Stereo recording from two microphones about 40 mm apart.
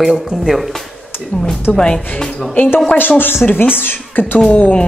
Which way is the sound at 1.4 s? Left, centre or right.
Centre.